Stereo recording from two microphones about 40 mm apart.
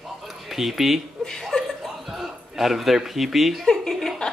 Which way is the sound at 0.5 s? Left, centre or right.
Centre.